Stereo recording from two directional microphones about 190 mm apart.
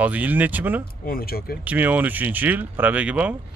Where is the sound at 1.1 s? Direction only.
50° left (ahead or behind).